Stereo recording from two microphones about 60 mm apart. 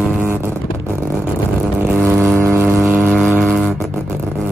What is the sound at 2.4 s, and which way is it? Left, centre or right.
Vehicle, right.